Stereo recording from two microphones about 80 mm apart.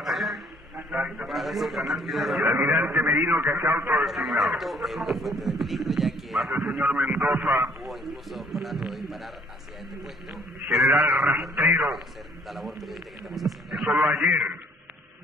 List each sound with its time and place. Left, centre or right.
0.0 s a sound: centre
0.7 s a sound: centre
1.2 s a man's voice: centre
2.5 s a man's voice: right
4.0 s speech: centre
6.9 s a man's voice: centre
7.8 s speech: centre
14.3 s a man's voice: right